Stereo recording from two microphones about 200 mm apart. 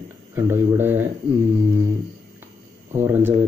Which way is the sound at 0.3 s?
10° right (ahead or behind).